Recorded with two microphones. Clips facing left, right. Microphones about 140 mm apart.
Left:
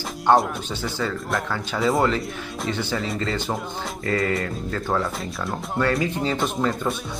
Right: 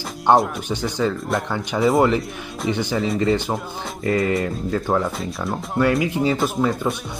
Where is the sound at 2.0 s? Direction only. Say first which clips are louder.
Right 5 dB; 20° right (ahead or behind).